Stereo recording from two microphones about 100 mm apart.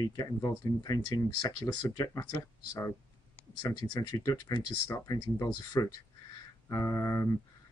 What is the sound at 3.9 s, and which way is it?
Speech, 40° left (ahead or behind).